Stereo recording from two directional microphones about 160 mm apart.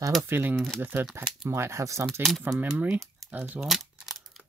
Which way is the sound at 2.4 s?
5° right (ahead or behind).